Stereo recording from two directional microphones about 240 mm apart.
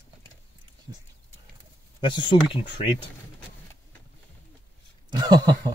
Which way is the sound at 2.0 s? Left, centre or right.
Centre.